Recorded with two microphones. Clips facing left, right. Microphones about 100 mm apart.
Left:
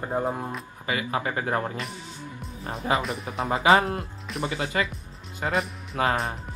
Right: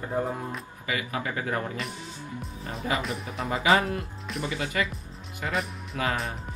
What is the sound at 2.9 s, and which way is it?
Speech, 35° left (ahead or behind).